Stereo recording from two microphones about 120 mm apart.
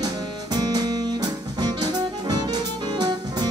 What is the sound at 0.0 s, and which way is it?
Music, 35° right (ahead or behind).